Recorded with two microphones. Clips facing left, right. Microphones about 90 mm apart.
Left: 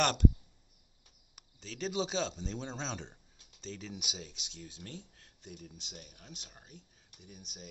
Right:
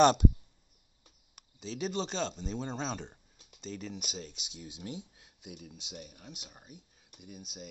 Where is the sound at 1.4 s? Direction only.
Centre (ahead or behind).